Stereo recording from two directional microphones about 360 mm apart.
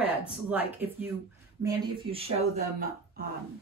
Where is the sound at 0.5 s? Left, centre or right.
Centre.